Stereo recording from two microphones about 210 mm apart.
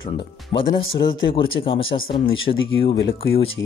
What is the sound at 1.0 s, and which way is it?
Speech, 25° left (ahead or behind).